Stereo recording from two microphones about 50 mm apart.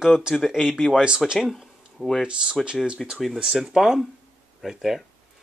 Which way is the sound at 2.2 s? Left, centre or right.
Centre.